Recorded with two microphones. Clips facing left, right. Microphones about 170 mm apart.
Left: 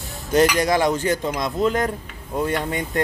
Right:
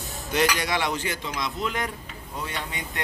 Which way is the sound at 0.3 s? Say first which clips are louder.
Left 7 dB; 45° left (ahead or behind).